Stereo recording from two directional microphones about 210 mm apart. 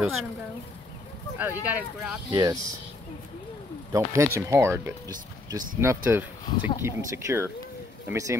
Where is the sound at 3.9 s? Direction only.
15° right (ahead or behind).